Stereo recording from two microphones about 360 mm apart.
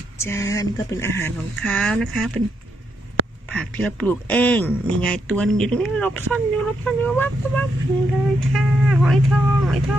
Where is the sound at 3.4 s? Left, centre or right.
Centre.